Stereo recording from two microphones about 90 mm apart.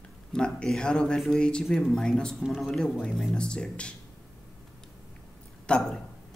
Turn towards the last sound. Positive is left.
turn(degrees=10)  # may be behind; listen again after turning